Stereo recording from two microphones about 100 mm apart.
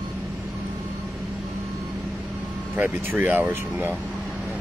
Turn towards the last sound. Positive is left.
turn(degrees=-20)  # may be behind; listen again after turning